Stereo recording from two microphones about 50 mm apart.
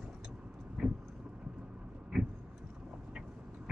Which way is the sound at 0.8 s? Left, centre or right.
Centre.